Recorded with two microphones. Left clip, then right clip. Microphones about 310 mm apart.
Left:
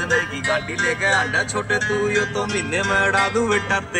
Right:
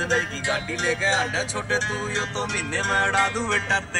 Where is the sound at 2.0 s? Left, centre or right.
Centre.